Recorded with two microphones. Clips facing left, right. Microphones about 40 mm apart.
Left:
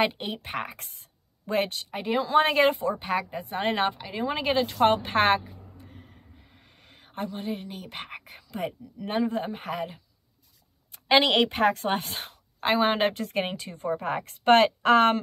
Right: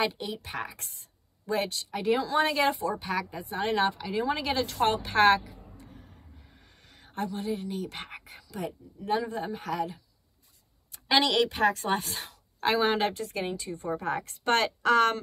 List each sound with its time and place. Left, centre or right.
0.0 s a woman's voice: left
6.9 s a woman's voice: left
12.5 s a woman's voice: left